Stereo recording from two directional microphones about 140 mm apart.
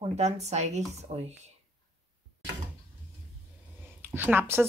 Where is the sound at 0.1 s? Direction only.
50° right (ahead or behind).